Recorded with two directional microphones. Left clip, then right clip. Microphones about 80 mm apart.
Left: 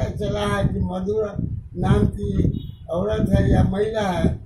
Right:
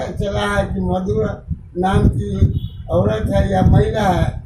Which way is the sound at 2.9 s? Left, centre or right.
Left.